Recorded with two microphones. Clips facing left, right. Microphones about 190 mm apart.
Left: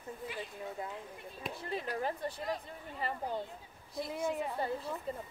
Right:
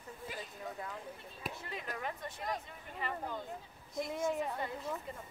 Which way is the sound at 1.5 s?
30° left (ahead or behind).